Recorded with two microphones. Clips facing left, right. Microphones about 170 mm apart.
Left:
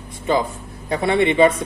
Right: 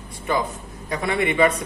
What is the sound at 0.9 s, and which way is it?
Speech, 30° left (ahead or behind).